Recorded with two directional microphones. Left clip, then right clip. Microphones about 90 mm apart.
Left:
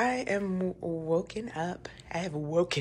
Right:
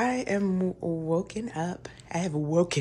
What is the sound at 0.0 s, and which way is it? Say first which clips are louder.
Speech: right 1 dB; 40° right (ahead or behind).